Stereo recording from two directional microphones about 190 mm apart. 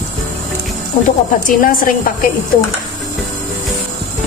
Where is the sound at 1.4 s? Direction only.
50° left (ahead or behind).